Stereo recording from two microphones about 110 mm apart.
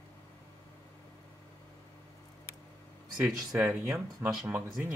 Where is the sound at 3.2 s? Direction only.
20° right (ahead or behind).